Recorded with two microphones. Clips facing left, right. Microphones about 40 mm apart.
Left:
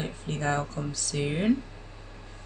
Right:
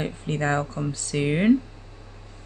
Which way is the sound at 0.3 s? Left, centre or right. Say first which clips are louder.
Right 4 dB; right.